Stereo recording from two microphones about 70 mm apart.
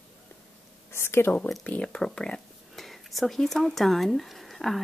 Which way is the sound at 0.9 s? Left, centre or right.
Left.